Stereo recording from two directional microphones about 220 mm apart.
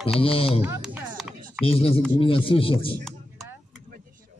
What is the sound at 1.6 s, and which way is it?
A man's voice, 25° left (ahead or behind).